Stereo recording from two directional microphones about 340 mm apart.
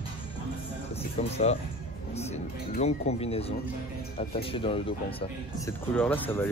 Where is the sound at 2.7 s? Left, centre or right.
Centre.